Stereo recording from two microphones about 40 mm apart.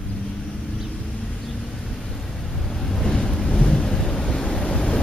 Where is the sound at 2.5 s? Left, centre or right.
Centre.